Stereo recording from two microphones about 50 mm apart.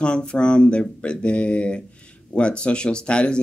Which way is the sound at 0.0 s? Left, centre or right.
Centre.